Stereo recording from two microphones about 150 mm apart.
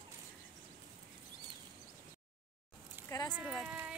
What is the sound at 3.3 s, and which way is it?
Speech, 5° right (ahead or behind).